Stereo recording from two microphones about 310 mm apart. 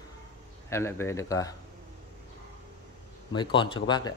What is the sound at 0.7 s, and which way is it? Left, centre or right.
Speech, centre.